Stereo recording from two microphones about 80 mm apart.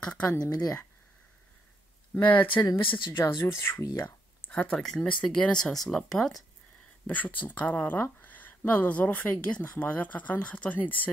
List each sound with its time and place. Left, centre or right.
0.4 s speech: left
2.1 s speech: left
2.8 s speech: left
3.1 s speech: left
4.5 s speech: centre
4.7 s speech: centre
7.1 s speech: centre